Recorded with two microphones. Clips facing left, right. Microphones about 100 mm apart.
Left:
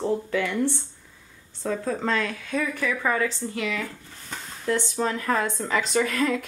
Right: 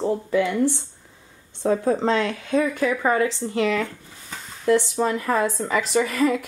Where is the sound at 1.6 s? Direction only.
35° right (ahead or behind).